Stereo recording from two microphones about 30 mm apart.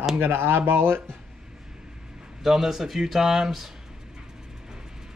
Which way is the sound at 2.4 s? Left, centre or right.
Centre.